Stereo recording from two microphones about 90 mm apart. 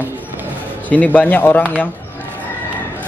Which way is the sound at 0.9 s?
20° left (ahead or behind).